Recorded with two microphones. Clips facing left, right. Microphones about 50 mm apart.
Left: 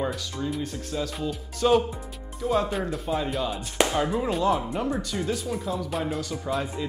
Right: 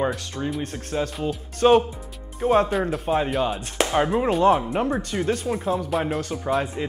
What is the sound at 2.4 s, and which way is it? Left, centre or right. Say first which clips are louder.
Speech: right 6 dB; right.